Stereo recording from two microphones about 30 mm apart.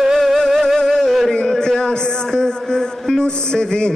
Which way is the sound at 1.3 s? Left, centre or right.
Left.